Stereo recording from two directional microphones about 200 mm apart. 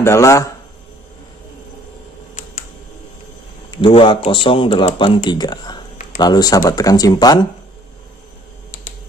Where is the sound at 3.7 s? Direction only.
25° left (ahead or behind).